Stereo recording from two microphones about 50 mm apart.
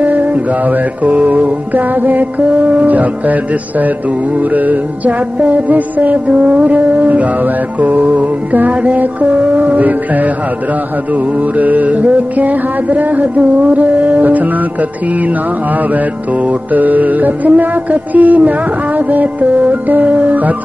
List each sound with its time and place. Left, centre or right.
0.0 s music: right
4.5 s music: right
11.5 s music: right
16.7 s music: right